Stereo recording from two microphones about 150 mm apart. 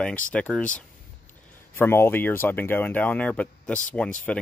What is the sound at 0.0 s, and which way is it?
Speech, 10° left (ahead or behind).